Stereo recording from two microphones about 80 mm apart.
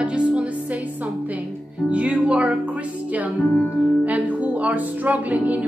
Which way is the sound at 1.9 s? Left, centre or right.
Centre.